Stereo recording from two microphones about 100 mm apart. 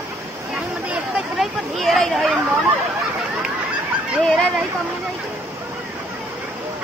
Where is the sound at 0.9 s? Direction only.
Centre (ahead or behind).